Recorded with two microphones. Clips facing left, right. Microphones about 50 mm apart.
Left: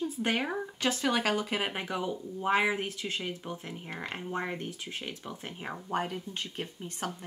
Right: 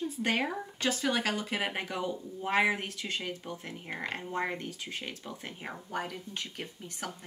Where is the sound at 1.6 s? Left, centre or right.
Centre.